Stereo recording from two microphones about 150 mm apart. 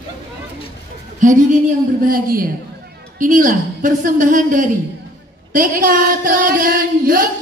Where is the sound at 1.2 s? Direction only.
60° right (ahead or behind).